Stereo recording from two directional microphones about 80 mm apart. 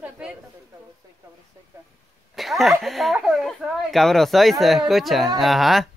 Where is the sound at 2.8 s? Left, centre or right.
Centre.